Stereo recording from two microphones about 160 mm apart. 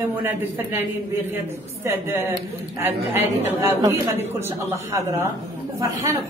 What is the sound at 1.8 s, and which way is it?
A woman's voice, 15° right (ahead or behind).